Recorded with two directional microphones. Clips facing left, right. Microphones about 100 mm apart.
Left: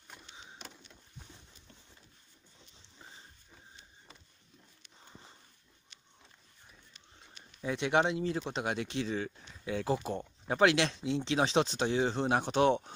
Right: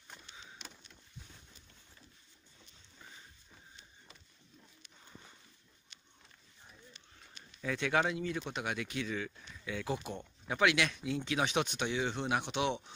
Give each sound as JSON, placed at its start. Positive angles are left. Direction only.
{"t": 2.8, "sound": "pig", "side_deg": 30}
{"t": 7.6, "sound": "speech", "side_deg": 25}